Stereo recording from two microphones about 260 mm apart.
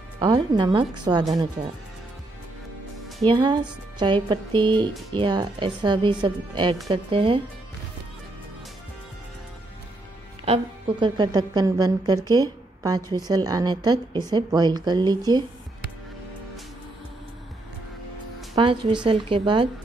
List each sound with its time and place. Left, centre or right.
0.2 s a woman's voice: centre
3.3 s a woman's voice: centre
10.4 s a woman's voice: right
18.5 s speech: centre